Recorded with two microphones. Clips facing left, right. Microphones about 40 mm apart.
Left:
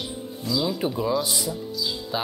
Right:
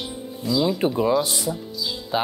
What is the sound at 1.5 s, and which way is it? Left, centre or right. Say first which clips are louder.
Speech: right 1 dB; centre.